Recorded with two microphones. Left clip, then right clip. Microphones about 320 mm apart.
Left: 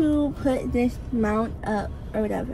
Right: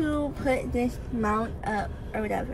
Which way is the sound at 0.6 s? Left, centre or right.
Centre.